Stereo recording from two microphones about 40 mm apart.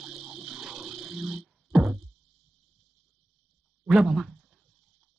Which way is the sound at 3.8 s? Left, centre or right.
Centre.